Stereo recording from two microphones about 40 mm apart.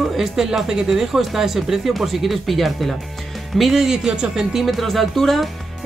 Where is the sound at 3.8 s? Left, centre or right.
Centre.